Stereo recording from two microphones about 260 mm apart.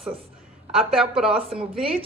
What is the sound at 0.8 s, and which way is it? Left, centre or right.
Speech, centre.